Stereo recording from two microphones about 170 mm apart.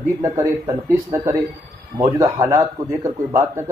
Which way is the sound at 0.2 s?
20° right (ahead or behind).